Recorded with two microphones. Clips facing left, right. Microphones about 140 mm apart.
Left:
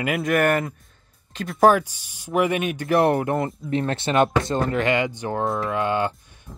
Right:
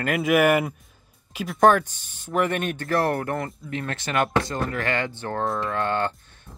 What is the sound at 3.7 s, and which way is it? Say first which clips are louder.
Speech: left 7 dB; 30° left (ahead or behind).